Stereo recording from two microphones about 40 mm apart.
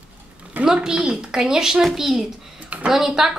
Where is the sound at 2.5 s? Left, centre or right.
Right.